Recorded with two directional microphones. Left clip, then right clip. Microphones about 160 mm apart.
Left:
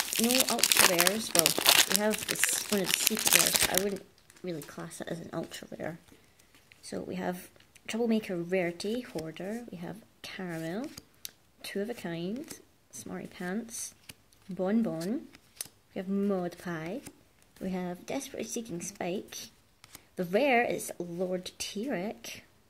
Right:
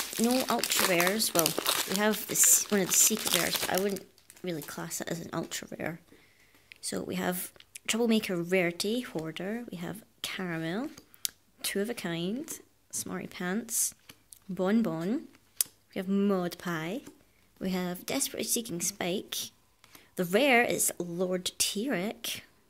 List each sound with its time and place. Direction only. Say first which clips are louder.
0.2 s speech: even; 30° right (ahead or behind)
0.7 s speech: left 1 dB; 20° left (ahead or behind)
2.0 s speech: right 1 dB; 25° right (ahead or behind)
3.0 s speech: left 1 dB; 30° left (ahead or behind)
3.7 s speech: right 1 dB; 25° right (ahead or behind)
14.1 s a sound: left 2 dB; 50° left (ahead or behind)
14.5 s speech: right 2 dB; 20° right (ahead or behind)